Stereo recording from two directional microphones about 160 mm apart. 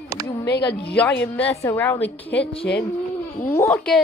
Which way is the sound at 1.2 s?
10° left (ahead or behind).